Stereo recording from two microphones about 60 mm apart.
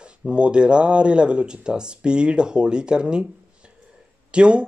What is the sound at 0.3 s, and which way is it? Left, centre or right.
Speech, centre.